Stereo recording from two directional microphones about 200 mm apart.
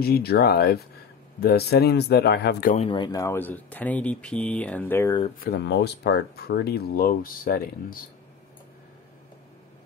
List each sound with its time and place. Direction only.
0.0 s speech: 50° left (ahead or behind)
2.9 s speech: 20° left (ahead or behind)
5.4 s speech: 55° left (ahead or behind)